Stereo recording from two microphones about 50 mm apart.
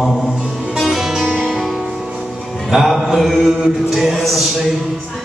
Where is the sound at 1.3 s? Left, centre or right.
Centre.